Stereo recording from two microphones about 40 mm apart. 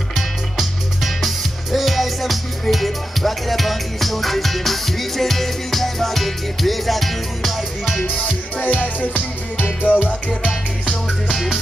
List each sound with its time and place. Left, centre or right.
0.1 s music: centre
8.5 s music: left
11.2 s music: centre